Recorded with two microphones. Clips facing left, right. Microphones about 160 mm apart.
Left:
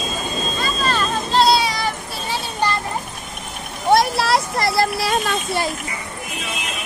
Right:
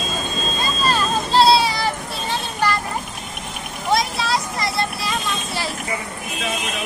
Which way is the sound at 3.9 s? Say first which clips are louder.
Left 5 dB; 65° left (ahead or behind).